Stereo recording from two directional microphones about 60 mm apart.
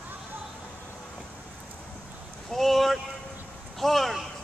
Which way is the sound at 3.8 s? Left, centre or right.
Centre.